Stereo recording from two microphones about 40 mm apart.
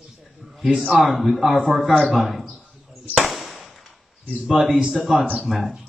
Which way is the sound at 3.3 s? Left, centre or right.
Centre.